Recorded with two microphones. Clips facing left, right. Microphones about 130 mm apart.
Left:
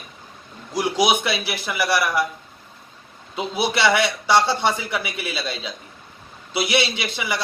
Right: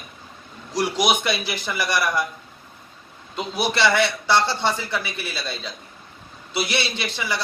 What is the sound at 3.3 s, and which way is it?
A man's voice, 10° left (ahead or behind).